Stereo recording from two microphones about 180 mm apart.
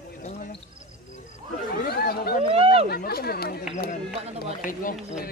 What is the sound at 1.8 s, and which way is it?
Chatter, 60° left (ahead or behind).